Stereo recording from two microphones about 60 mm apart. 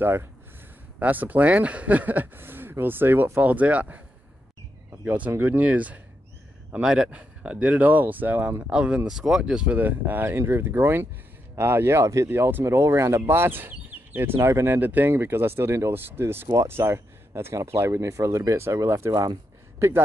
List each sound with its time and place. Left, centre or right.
0.0 s speech: right
0.9 s speech: right
3.3 s speech: right
5.0 s speech: right
6.7 s speech: centre
8.6 s speech: centre
9.8 s speech: right
12.0 s speech: right
12.3 s speech: right
12.6 s speech: right
13.3 s speech: right
14.4 s speech: right
14.7 s speech: right